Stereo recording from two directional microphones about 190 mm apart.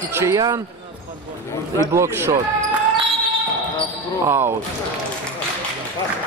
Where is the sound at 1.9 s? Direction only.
15° right (ahead or behind).